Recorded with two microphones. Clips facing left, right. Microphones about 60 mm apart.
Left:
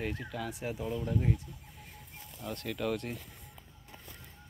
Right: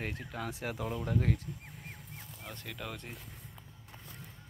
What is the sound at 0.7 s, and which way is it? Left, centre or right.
Speech, right.